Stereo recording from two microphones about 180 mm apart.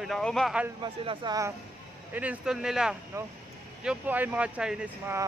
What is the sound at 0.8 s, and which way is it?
Speech, 25° right (ahead or behind).